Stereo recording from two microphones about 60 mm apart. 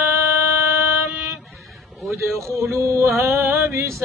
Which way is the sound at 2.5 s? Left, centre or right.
Right.